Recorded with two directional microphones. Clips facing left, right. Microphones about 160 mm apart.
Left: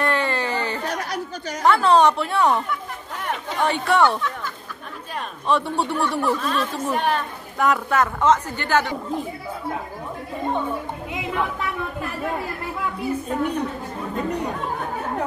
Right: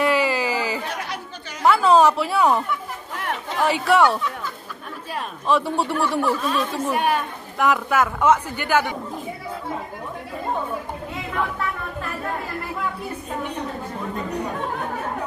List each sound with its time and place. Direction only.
0.0 s a sound: 5° right (ahead or behind)
0.8 s chatter: 40° left (ahead or behind)
1.6 s a woman's voice: 5° right (ahead or behind)
5.5 s speech: centre (ahead or behind)